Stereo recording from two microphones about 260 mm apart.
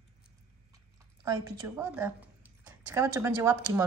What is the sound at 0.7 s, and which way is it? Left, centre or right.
Speech, centre.